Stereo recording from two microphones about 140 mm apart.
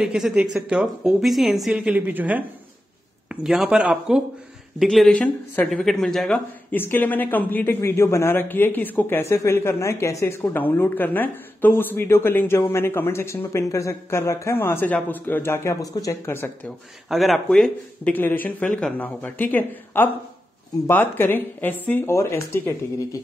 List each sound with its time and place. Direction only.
0.0 s a woman's voice: 5° right (ahead or behind); by 16.7 s 15° left (ahead or behind)
17.1 s a man's voice: centre (ahead or behind); by 23.2 s 20° left (ahead or behind)